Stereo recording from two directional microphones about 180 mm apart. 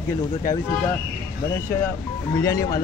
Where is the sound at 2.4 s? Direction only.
20° left (ahead or behind).